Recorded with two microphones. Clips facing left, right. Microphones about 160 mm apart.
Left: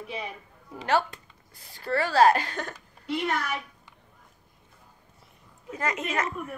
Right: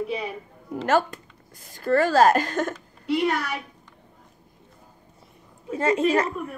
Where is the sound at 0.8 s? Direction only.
45° right (ahead or behind).